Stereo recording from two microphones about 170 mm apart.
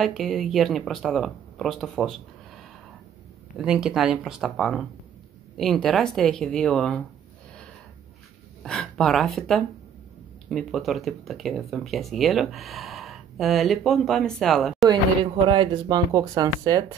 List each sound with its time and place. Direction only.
0.0 s speech: centre (ahead or behind)
8.6 s speech: centre (ahead or behind)
10.5 s speech: centre (ahead or behind)
15.4 s speech: 25° right (ahead or behind)